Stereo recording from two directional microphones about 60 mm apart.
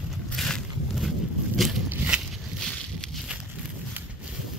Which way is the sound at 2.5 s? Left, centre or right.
Centre.